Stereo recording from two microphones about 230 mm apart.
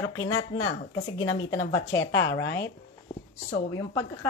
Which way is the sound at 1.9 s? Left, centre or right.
Left.